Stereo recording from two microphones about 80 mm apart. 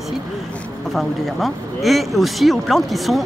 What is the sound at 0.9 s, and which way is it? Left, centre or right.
Speech, centre.